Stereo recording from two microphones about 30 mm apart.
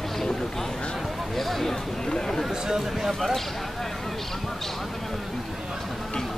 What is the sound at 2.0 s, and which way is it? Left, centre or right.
Speech, centre.